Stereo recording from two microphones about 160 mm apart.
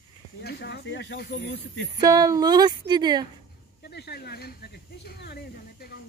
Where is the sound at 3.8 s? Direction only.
90° left.